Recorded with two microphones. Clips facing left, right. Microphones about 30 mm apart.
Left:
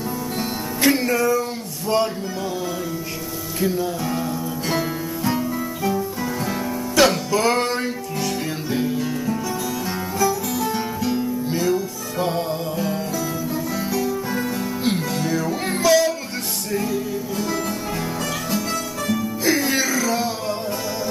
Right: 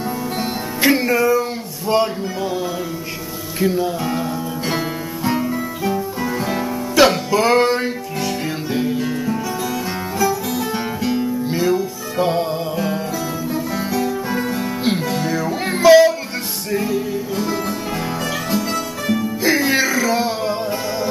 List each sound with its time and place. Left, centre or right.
0.8 s music: centre
3.5 s speech: centre
4.6 s music: centre
19.0 s music: centre